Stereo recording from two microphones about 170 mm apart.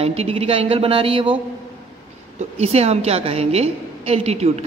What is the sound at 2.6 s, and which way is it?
A woman's voice, 35° right (ahead or behind).